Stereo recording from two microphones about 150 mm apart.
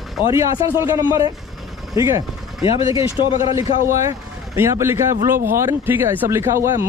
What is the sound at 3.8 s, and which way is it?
Speech, 20° right (ahead or behind).